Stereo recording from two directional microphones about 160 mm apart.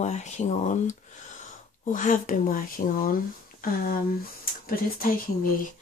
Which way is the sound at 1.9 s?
55° left (ahead or behind).